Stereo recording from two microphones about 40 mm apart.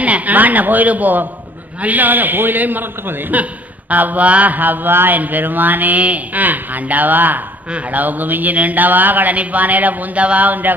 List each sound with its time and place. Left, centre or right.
0.0 s speech: right
7.7 s speech: right